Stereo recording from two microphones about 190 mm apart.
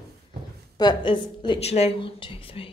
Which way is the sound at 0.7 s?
20° left (ahead or behind).